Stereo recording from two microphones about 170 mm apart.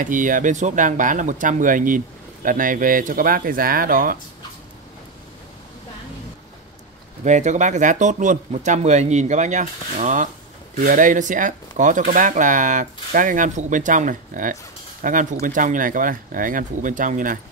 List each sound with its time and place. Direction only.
0.0 s speech: 50° right (ahead or behind)
7.2 s speech: 45° right (ahead or behind)